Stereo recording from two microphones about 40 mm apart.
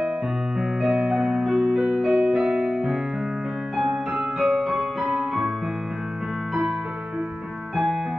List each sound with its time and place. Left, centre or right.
0.6 s music: centre
1.0 s music: right
1.4 s music: centre
2.3 s music: right
3.7 s music: centre
7.7 s music: centre